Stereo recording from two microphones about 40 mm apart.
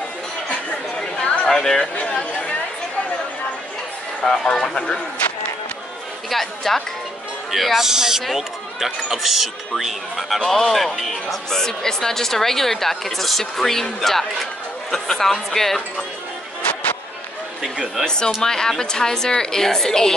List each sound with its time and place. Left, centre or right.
1.2 s a sound: left
1.5 s speech: centre
2.0 s chatter: left
4.2 s speech: centre
6.3 s speech: centre
7.8 s speech: centre
18.0 s speech: centre